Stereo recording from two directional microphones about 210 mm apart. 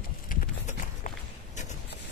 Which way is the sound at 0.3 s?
40° left (ahead or behind).